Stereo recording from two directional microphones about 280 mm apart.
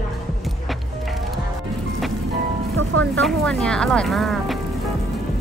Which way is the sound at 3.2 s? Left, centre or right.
Centre.